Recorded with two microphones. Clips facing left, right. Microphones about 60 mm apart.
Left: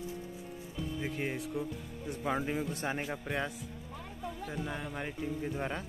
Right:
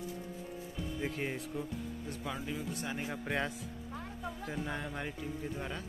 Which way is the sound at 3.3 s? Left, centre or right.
Centre.